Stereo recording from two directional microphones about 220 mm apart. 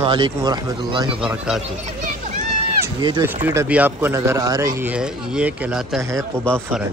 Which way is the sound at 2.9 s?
20° right (ahead or behind).